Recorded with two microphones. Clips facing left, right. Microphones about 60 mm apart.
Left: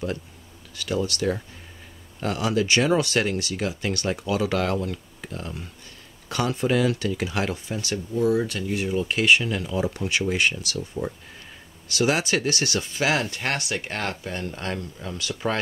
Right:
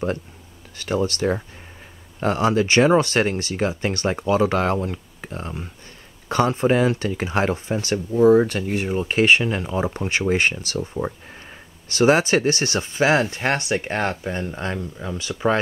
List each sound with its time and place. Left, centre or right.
0.7 s speech: right